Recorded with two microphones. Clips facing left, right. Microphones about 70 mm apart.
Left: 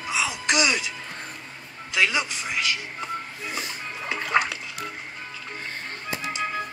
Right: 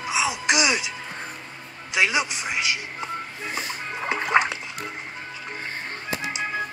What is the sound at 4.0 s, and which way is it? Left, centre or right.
Music, right.